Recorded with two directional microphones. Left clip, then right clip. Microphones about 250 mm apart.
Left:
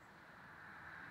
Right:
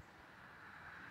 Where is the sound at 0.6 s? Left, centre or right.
Right.